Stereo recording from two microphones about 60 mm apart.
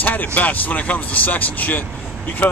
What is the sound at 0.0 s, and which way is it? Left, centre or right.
Speech, left.